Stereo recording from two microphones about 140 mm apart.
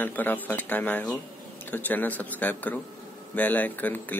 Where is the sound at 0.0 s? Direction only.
15° left (ahead or behind).